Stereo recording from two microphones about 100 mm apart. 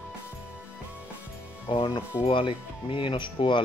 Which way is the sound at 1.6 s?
55° left (ahead or behind).